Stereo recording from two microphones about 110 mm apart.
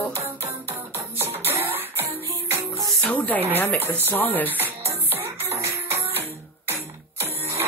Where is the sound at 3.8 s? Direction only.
20° right (ahead or behind).